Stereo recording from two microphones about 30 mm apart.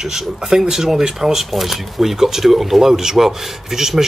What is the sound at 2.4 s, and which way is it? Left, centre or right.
Speech, centre.